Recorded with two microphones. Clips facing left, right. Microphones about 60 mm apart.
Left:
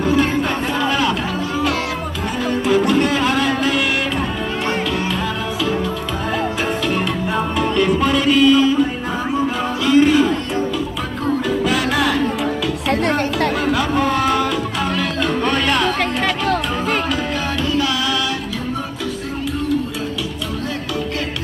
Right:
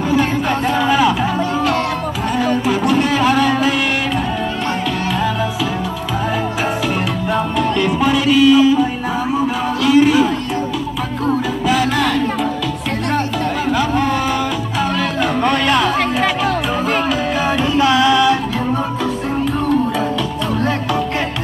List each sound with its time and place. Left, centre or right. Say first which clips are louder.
0.1 s a sound: right 3 dB; centre
2.9 s music: right 2 dB; centre
7.3 s music: right 1 dB; centre
9.8 s a sound: right 1 dB; centre
11.6 s music: right 4 dB; centre
13.7 s music: right 1 dB; centre
17.7 s music: right 9 dB; right